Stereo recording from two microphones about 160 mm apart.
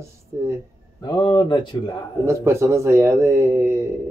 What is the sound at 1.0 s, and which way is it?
Speech, 25° left (ahead or behind).